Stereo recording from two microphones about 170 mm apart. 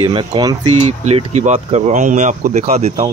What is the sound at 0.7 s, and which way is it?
Speech, 35° right (ahead or behind).